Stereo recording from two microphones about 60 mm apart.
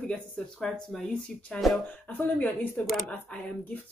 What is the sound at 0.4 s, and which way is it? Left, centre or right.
Speech, centre.